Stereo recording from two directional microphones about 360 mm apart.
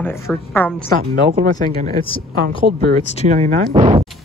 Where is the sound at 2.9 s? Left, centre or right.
Centre.